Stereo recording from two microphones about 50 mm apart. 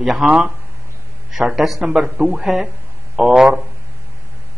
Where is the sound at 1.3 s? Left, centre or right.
Centre.